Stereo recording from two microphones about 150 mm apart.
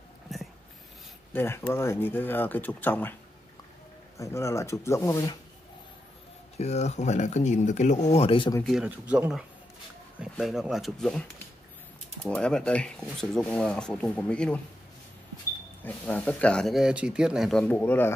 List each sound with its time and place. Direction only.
0.3 s a sound: centre (ahead or behind)
1.3 s speech: 15° left (ahead or behind)
4.2 s speech: 20° left (ahead or behind)
6.6 s speech: 45° left (ahead or behind)
8.6 s speech: 5° right (ahead or behind)
15.8 s speech: 10° left (ahead or behind)